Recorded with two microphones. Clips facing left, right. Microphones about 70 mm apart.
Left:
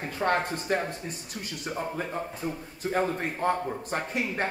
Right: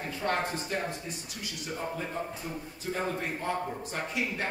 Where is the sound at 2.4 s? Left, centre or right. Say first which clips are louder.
Left 5 dB; left.